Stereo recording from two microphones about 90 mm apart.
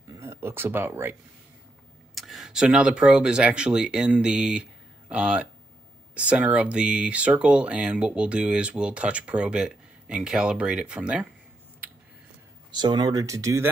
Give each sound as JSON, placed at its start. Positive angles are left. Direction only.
{"t": 0.1, "sound": "a sound", "side_deg": -30}
{"t": 2.1, "sound": "speech", "side_deg": 0}
{"t": 12.7, "sound": "speech", "side_deg": -55}